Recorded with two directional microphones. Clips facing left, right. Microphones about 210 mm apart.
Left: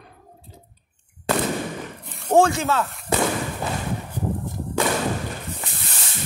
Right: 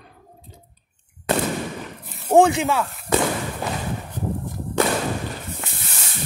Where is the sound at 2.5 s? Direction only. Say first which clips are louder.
Right 1 dB; 15° right (ahead or behind).